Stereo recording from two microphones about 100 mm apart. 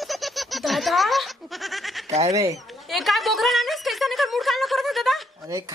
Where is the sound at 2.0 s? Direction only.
90° right.